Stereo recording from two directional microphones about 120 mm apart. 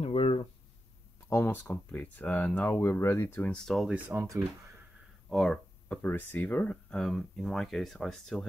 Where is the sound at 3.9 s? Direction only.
15° right (ahead or behind).